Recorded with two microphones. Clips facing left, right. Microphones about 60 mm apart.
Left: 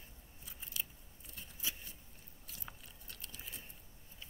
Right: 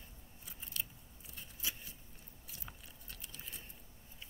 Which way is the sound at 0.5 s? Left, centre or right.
Centre.